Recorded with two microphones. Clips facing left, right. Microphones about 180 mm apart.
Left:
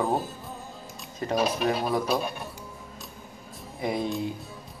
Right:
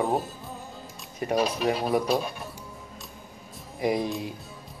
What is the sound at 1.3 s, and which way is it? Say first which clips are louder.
Speech: even; 15° right (ahead or behind).